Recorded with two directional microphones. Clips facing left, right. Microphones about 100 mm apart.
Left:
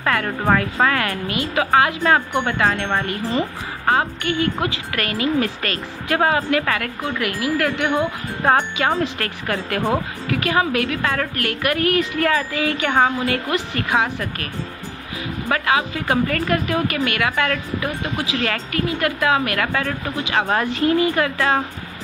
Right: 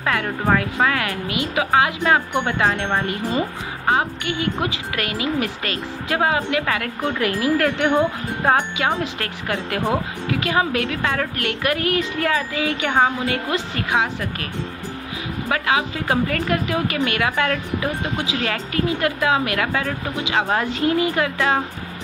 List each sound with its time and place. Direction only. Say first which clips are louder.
0.0 s a woman's voice: left 1 dB; 15° right (ahead or behind)
7.2 s a woman's voice: right 2 dB; 30° right (ahead or behind)
8.5 s a woman's voice: left 1 dB; 15° right (ahead or behind)
11.0 s a woman's voice: left 1 dB; 10° right (ahead or behind)